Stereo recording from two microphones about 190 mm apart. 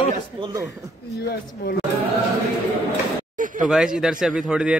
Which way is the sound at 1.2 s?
55° left (ahead or behind).